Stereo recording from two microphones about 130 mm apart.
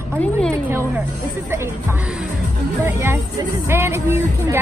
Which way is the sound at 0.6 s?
20° right (ahead or behind).